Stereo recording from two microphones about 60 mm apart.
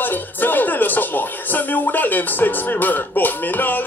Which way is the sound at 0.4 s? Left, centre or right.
Left.